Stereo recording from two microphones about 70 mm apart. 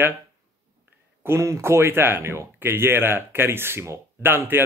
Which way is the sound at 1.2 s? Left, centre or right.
Right.